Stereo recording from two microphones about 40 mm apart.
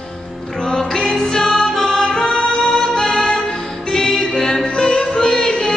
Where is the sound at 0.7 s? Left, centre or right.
Centre.